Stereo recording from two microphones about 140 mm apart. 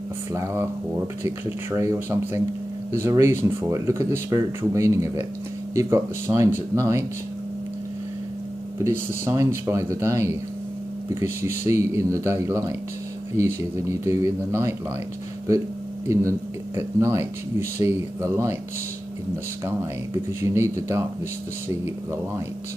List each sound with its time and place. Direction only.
0.3 s speech: 20° right (ahead or behind)
8.8 s speech: 20° right (ahead or behind)
16.1 s speech: 20° right (ahead or behind)
20.2 s speech: 20° right (ahead or behind)